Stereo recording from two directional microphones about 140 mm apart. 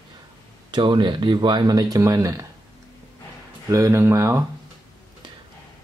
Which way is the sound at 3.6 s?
20° right (ahead or behind).